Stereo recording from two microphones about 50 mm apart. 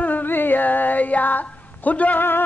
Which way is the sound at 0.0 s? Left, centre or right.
Left.